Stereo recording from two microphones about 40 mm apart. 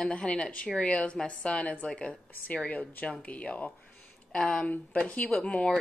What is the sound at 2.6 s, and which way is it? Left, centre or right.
Speech, left.